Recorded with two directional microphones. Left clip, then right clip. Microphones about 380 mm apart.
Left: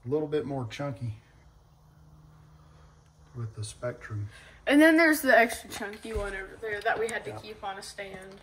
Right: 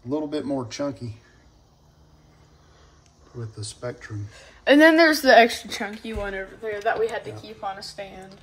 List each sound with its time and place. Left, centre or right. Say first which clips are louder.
0.1 s speech: right 2 dB; centre
3.5 s speech: right 2 dB; centre
4.3 s a woman's voice: right 8 dB; right